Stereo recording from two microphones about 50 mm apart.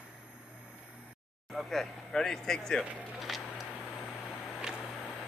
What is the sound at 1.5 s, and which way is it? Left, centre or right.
Speech, centre.